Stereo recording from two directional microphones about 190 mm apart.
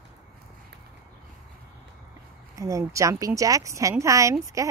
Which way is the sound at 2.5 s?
15° right (ahead or behind).